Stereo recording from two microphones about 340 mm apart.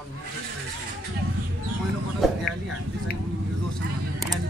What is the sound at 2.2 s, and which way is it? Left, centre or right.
Speech, centre.